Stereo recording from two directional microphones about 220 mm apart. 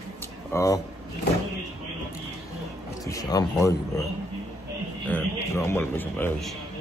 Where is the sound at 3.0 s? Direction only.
15° left (ahead or behind).